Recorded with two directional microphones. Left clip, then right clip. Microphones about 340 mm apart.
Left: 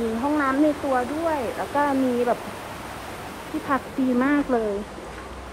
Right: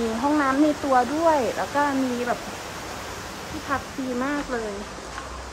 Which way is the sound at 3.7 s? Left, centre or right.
Left.